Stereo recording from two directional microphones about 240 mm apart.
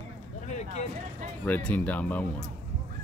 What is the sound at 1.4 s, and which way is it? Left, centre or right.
Speech, centre.